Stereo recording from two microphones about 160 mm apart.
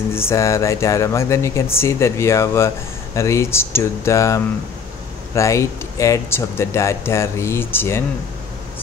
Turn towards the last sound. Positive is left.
turn(degrees=15)  # may be behind; listen again after turning